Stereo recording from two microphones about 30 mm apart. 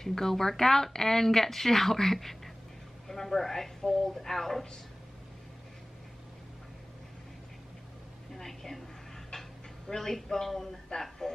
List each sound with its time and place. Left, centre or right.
0.0 s speech: centre
8.4 s a woman's voice: centre
9.3 s a sound: centre
11.0 s speech: centre